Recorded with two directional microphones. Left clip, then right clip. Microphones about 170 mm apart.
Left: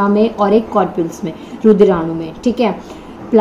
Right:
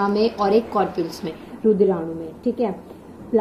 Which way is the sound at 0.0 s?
45° left (ahead or behind).